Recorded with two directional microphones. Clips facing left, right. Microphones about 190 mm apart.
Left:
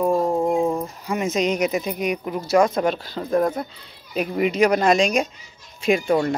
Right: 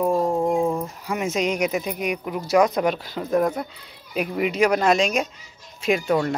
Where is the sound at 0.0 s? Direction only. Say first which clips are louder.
Left 1 dB; centre (ahead or behind).